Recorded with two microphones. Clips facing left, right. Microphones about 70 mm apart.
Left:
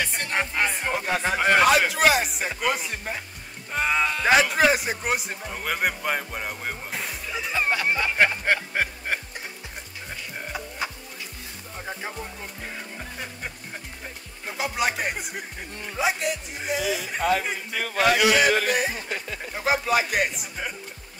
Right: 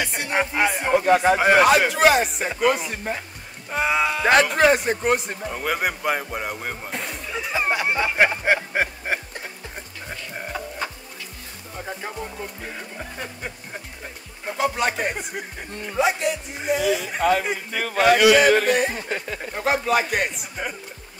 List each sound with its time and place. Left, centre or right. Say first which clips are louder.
0.0 s speech: right 3 dB; centre
7.6 s speech: right 2 dB; centre
8.7 s music: right 3 dB; centre
10.8 s music: left 1 dB; centre
14.4 s speech: right 4 dB; centre
17.2 s a man's voice: right 3 dB; right
18.7 s speech: right 4 dB; centre